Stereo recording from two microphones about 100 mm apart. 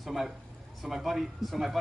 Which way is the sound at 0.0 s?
5° right (ahead or behind).